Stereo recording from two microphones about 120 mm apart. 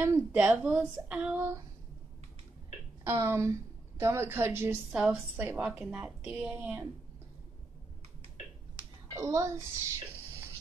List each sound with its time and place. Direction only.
0.0 s speech: 15° right (ahead or behind)
3.0 s a woman's voice: 20° right (ahead or behind)
4.9 s a woman's voice: 5° right (ahead or behind)
5.3 s speech: 15° right (ahead or behind)
9.1 s a woman's voice: 25° right (ahead or behind)